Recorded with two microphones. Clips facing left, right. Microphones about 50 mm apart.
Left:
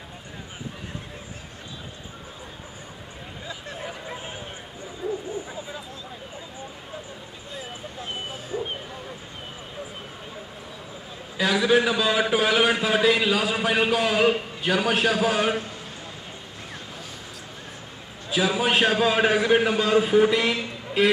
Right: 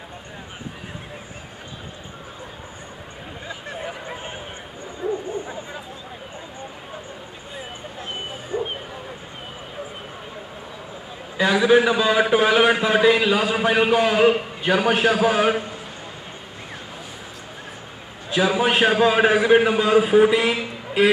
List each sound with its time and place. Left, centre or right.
3.8 s a sound: centre
8.5 s bow-wow: centre
11.3 s a man's voice: centre
18.3 s a man's voice: centre